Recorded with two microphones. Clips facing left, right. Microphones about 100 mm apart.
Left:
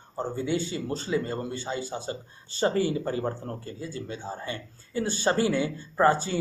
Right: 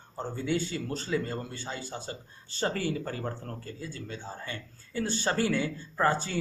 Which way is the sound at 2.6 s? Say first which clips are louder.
Left 5 dB; 15° left (ahead or behind).